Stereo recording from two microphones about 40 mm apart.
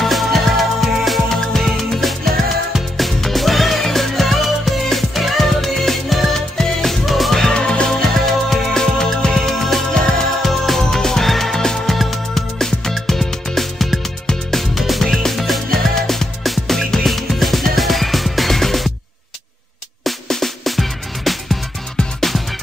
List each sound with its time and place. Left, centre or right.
0.0 s music: centre
7.4 s music: left
8.0 s music: centre
9.5 s music: centre
20.0 s music: centre